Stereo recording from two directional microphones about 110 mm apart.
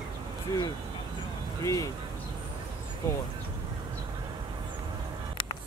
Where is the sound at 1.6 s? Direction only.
30° left (ahead or behind).